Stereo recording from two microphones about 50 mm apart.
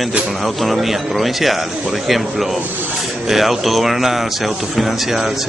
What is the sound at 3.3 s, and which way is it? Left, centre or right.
Speech, centre.